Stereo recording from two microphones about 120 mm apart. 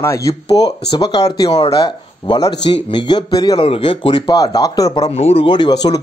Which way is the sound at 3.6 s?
50° left (ahead or behind).